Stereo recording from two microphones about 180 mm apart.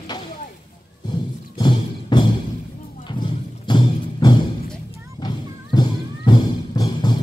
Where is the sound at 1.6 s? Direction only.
25° left (ahead or behind).